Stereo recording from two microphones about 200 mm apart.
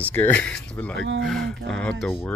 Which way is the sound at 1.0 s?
65° right (ahead or behind).